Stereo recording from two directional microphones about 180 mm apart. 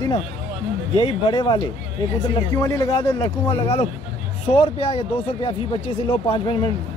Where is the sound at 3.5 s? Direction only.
30° left (ahead or behind).